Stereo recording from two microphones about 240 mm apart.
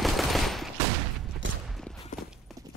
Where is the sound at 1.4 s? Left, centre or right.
Right.